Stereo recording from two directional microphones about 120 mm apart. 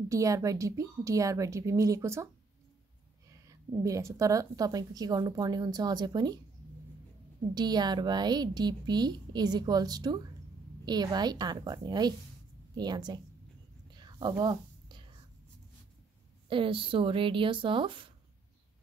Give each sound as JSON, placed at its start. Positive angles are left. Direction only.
{"t": 0.1, "sound": "a woman's voice", "side_deg": -25}
{"t": 3.3, "sound": "a woman's voice", "side_deg": -30}
{"t": 7.5, "sound": "a woman's voice", "side_deg": -35}
{"t": 13.9, "sound": "whispering", "side_deg": -35}
{"t": 16.4, "sound": "speech", "side_deg": -45}